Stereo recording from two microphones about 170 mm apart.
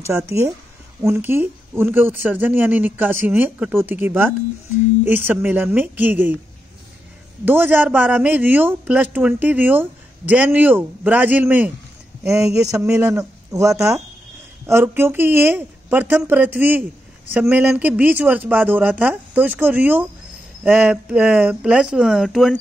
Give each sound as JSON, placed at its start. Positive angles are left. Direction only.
{"t": 0.0, "sound": "a man's voice", "side_deg": -15}
{"t": 7.4, "sound": "a man's voice", "side_deg": -10}